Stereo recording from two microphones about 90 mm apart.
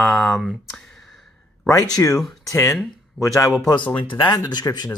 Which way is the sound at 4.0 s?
70° left (ahead or behind).